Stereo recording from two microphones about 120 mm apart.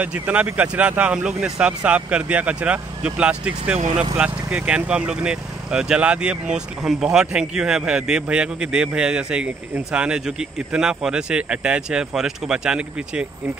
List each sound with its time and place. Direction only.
0.0 s speech: 10° right (ahead or behind)
3.7 s speech: 65° right (ahead or behind)
4.2 s speech: 10° right (ahead or behind)